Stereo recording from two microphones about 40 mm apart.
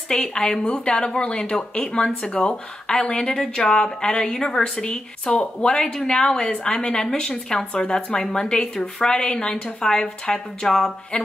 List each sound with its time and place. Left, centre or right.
0.1 s a woman's voice: centre
4.8 s a woman's voice: left
5.8 s a woman's voice: centre